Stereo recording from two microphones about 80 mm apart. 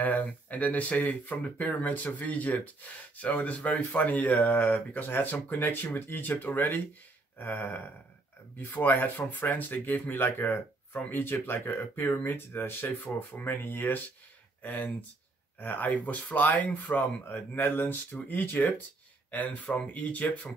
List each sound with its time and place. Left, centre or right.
0.0 s speech: centre